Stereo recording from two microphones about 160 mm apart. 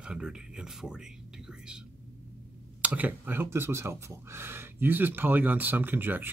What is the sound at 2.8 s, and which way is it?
Speech, 10° right (ahead or behind).